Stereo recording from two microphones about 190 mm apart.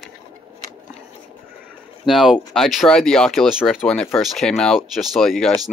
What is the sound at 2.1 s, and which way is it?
Speech, centre (ahead or behind).